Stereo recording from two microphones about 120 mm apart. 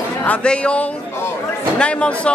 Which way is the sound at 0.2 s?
10° left (ahead or behind).